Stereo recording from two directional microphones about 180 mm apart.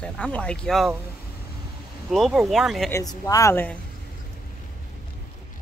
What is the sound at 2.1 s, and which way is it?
Speech, centre (ahead or behind).